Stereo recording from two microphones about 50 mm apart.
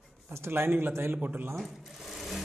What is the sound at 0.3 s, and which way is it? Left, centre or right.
Speech, right.